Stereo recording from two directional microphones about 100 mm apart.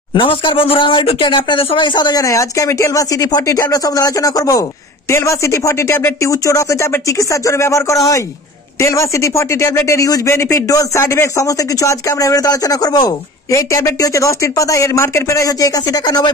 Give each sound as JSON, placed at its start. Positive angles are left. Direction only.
{"t": 0.1, "sound": "speech", "side_deg": 60}
{"t": 2.0, "sound": "speech", "side_deg": 45}